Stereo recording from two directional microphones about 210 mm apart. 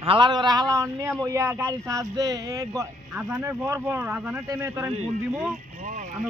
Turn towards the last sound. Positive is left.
turn(degrees=-40)  # may be behind; listen again after turning